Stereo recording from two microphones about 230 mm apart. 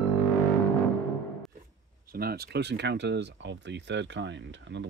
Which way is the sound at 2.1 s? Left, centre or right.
Right.